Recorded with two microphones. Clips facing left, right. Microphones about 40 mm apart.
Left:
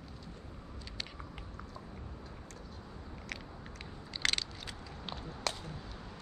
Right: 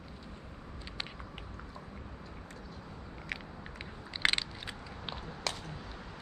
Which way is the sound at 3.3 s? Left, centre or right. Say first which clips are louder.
Right 4 dB; centre.